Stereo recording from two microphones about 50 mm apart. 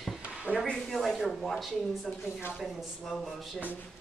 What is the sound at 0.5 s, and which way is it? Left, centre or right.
Speech, right.